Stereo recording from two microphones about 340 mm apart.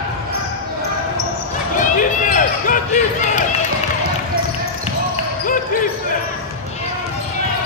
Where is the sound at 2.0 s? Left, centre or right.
Left.